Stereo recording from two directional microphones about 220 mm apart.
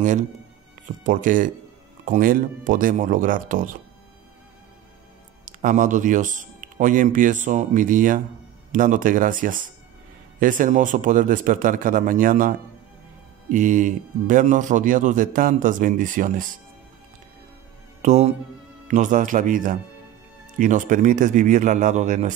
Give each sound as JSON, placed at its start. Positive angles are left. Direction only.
{"t": 1.0, "sound": "a man's voice", "side_deg": -35}
{"t": 5.4, "sound": "a man's voice", "side_deg": -35}
{"t": 18.0, "sound": "a man's voice", "side_deg": -30}